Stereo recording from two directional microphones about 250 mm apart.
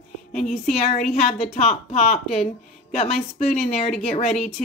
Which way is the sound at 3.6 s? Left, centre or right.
Left.